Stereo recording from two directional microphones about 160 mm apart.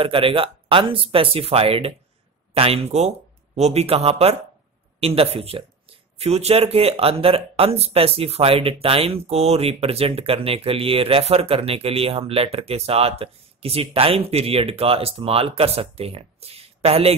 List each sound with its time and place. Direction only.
0.0 s speech: 35° right (ahead or behind)